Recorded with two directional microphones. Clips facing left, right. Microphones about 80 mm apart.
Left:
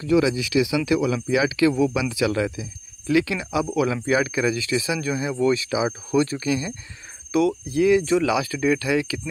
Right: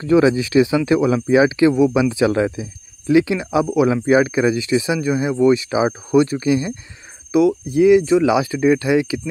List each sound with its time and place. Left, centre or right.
0.0 s speech: right; by 5.7 s centre
5.7 s speech: right
6.1 s speech: right